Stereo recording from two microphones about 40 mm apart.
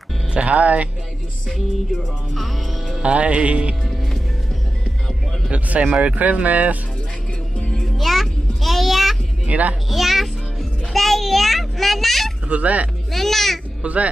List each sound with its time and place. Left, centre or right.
0.3 s speech: right
2.3 s music: centre
3.0 s speech: right
5.5 s speech: right
7.5 s music: left
8.0 s a sound: centre
9.5 s speech: right
9.8 s music: centre
12.4 s speech: right
13.1 s a child's voice: centre
13.8 s speech: right